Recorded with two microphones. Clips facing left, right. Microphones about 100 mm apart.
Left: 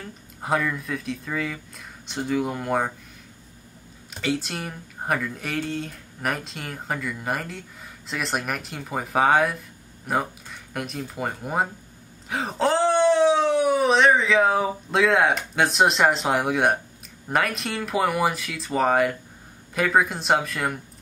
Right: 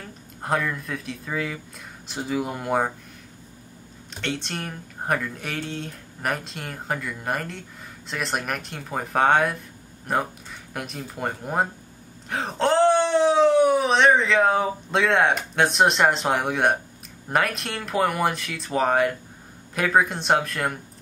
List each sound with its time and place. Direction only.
0.0 s speech: centre (ahead or behind)
4.1 s speech: 5° left (ahead or behind)